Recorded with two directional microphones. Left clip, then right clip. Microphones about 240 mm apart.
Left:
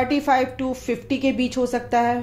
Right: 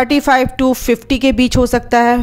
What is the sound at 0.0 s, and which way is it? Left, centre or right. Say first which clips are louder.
A woman's voice: right 7 dB; right.